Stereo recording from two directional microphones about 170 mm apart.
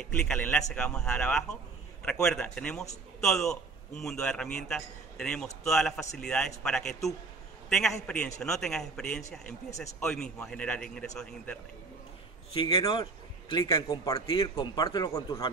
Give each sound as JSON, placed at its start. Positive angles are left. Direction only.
{"t": 0.0, "sound": "a man's voice", "side_deg": 5}
{"t": 12.5, "sound": "a man's voice", "side_deg": 30}